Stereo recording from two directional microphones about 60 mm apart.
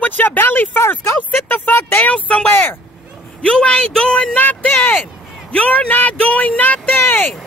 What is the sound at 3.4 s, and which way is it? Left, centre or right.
Speech, centre.